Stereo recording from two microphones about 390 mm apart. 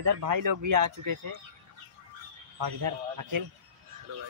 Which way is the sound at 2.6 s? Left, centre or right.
Right.